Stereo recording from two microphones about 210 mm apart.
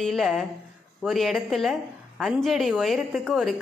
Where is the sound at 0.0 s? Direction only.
Centre (ahead or behind).